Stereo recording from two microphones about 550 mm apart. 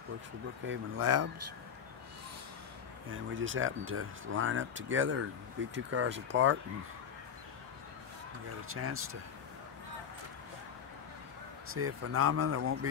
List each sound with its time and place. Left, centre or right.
0.7 s speech: right
3.1 s speech: right
8.6 s speech: right
11.7 s speech: right